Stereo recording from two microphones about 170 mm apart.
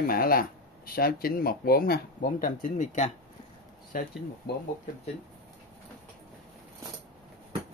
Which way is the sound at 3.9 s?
55° left (ahead or behind).